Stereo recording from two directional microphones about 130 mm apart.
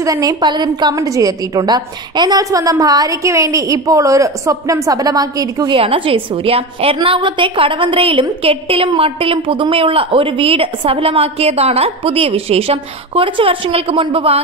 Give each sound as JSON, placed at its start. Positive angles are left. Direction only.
{"t": 0.0, "sound": "a woman's voice", "side_deg": -25}
{"t": 5.8, "sound": "a woman's voice", "side_deg": -45}